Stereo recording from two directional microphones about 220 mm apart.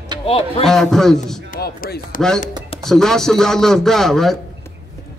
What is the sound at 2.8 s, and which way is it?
A man's voice, centre (ahead or behind).